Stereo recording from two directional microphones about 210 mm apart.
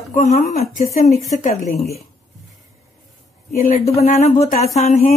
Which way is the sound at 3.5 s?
40° left (ahead or behind).